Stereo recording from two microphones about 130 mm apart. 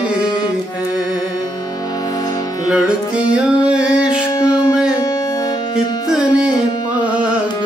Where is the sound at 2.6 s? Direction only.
10° right (ahead or behind).